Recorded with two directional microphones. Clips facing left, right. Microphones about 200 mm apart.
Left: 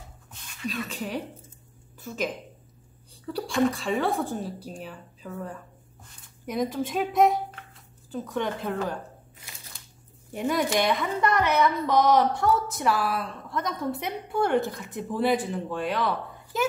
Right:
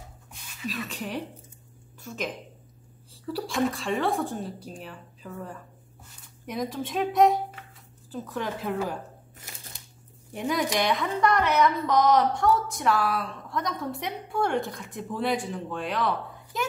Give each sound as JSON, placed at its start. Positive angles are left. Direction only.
{"t": 0.3, "sound": "a sound", "side_deg": 0}
{"t": 2.0, "sound": "a woman's voice", "side_deg": 0}
{"t": 10.3, "sound": "a woman's voice", "side_deg": 0}